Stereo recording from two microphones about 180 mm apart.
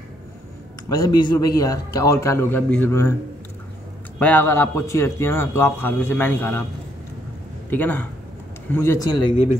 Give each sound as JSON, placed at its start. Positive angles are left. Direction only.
{"t": 0.8, "sound": "a man's voice", "side_deg": 20}
{"t": 4.2, "sound": "a man's voice", "side_deg": 10}
{"t": 7.7, "sound": "a man's voice", "side_deg": 10}